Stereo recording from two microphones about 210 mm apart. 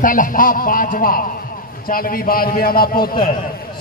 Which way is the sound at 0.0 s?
40° left (ahead or behind).